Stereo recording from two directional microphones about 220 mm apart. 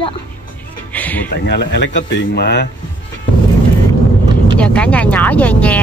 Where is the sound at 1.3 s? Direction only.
50° left (ahead or behind).